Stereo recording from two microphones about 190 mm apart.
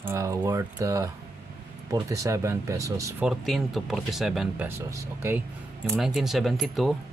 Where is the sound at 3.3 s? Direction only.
Centre (ahead or behind).